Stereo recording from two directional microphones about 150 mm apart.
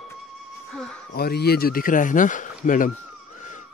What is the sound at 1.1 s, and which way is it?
Speech, 90° left.